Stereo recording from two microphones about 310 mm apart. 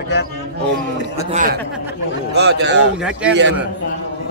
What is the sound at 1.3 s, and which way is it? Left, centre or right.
A man's voice, right.